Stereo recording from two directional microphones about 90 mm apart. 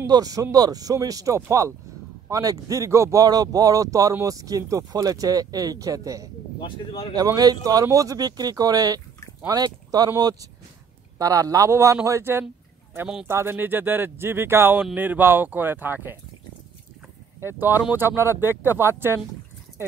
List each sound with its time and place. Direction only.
0.0 s speech: 40° right (ahead or behind)
6.6 s speech: 80° left
7.2 s speech: 45° right (ahead or behind); by 16.2 s 20° right (ahead or behind)
17.6 s speech: 20° right (ahead or behind)